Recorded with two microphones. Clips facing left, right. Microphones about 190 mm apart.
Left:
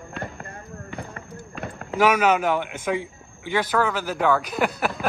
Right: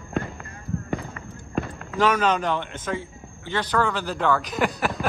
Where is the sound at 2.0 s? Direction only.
10° left (ahead or behind).